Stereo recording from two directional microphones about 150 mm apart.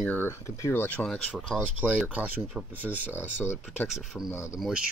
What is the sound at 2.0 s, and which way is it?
Speech, 10° right (ahead or behind).